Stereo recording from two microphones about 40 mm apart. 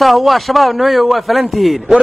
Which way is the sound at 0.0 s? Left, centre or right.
Centre.